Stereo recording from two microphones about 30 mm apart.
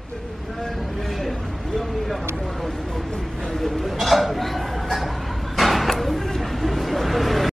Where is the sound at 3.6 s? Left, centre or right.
Centre.